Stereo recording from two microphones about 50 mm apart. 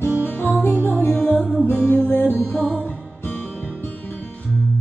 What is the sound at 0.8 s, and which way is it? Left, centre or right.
Music, left.